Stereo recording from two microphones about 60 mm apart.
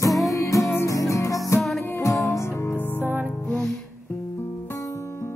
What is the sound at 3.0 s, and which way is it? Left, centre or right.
Music, right.